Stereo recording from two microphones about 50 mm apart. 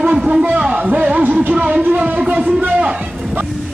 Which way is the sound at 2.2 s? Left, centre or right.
Right.